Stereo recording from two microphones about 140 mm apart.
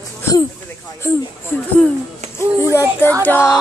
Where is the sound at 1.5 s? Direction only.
15° left (ahead or behind).